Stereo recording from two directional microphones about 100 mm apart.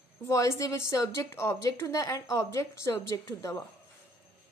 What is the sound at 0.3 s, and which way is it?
A woman's voice, 30° left (ahead or behind).